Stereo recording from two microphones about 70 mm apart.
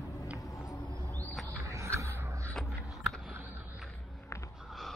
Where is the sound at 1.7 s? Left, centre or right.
Right.